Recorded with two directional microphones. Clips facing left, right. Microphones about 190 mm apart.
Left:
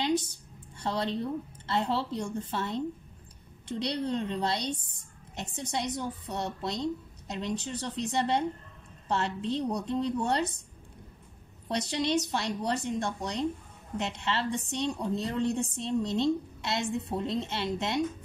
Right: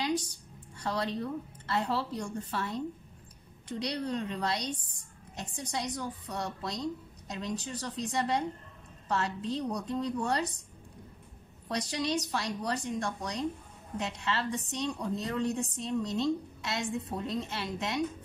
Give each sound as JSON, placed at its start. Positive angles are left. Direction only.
{"t": 0.7, "sound": "a woman's voice", "side_deg": 25}
{"t": 11.7, "sound": "a woman's voice", "side_deg": 25}